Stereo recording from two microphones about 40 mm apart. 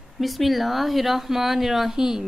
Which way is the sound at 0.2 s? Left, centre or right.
Centre.